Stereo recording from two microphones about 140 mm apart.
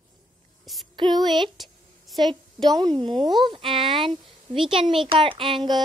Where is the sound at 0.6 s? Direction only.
Centre (ahead or behind).